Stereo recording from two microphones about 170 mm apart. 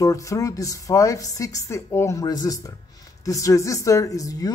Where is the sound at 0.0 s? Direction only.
20° left (ahead or behind).